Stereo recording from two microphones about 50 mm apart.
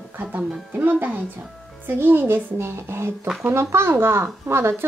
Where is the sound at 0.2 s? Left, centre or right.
Right.